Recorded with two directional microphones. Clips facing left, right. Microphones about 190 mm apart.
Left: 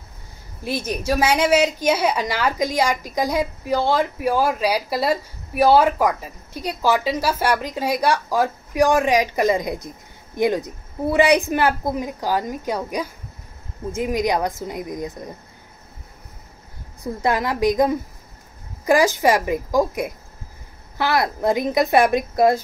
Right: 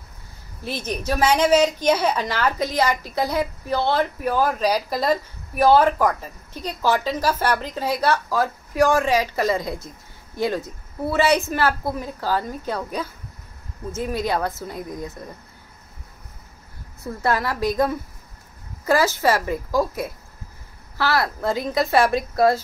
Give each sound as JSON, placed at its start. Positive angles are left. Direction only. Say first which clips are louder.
{"t": 0.7, "sound": "a woman's voice", "louder": "left 3 dB", "side_deg": 10}
{"t": 17.0, "sound": "a woman's voice", "louder": "left 1 dB", "side_deg": 15}